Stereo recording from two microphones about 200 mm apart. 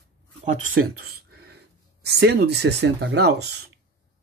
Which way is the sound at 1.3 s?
55° right (ahead or behind).